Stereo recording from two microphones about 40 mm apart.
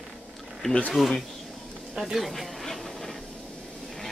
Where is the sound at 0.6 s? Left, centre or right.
Centre.